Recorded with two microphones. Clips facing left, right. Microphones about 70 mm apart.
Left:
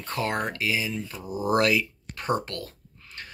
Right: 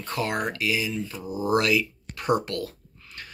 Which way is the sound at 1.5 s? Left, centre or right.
Left.